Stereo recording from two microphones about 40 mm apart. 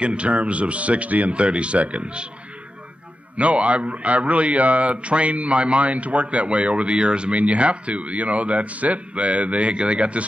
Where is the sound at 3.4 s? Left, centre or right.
Right.